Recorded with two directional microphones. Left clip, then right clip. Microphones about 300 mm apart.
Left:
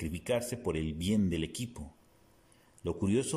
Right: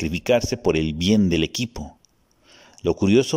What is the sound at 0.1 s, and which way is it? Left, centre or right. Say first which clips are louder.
A man's voice: right 13 dB; right.